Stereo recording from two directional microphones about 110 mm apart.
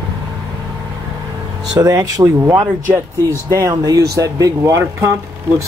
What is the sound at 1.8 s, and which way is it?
Speech, 30° right (ahead or behind).